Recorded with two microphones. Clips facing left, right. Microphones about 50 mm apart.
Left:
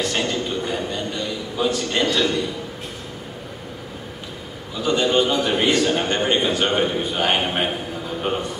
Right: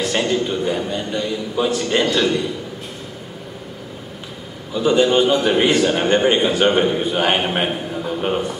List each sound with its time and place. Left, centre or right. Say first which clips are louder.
0.0 s a man's voice: right 4 dB; centre
4.7 s a man's voice: right 4 dB; centre